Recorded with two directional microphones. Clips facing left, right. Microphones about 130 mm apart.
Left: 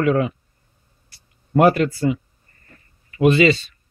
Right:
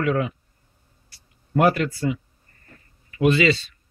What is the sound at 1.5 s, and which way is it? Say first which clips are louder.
Speech: left 4 dB; 40° left (ahead or behind).